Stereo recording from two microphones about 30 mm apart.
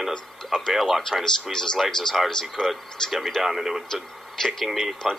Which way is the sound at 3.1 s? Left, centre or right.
Centre.